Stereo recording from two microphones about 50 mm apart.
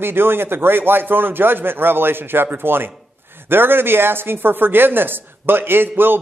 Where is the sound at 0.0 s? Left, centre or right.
Right.